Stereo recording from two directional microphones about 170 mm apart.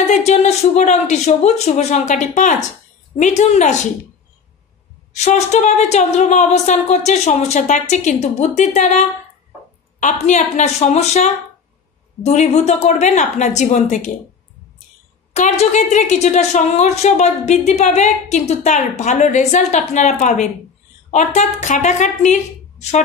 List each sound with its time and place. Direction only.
0.0 s a woman's voice: 45° left (ahead or behind)
5.1 s a woman's voice: 40° left (ahead or behind)
10.2 s a woman's voice: 40° left (ahead or behind)
15.3 s a woman's voice: 40° left (ahead or behind)